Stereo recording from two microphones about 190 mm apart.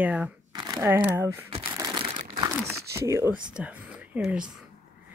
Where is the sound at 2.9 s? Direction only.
15° right (ahead or behind).